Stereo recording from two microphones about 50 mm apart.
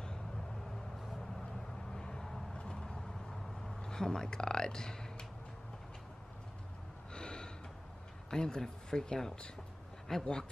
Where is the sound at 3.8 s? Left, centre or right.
Centre.